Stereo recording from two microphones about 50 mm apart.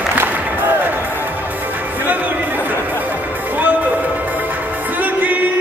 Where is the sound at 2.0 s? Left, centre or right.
Right.